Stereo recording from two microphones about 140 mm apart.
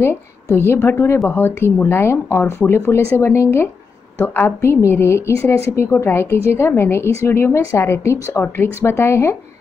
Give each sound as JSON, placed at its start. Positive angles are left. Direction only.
{"t": 0.0, "sound": "a woman's voice", "side_deg": 15}